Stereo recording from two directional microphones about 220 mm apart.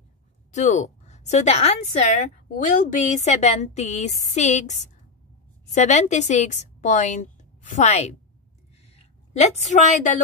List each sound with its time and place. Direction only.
0.5 s a woman's voice: 35° left (ahead or behind)
5.8 s a woman's voice: 35° left (ahead or behind)